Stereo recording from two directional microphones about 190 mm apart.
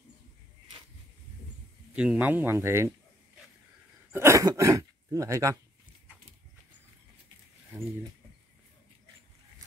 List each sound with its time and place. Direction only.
2.0 s speech: 5° right (ahead or behind)
4.1 s speech: 15° right (ahead or behind)
9.6 s a sound: 15° right (ahead or behind)